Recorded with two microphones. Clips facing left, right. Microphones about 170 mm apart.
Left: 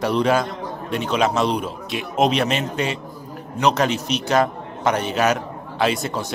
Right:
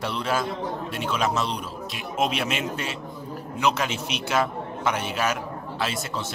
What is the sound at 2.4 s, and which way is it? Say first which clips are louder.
Speech: left 6 dB; 65° left (ahead or behind).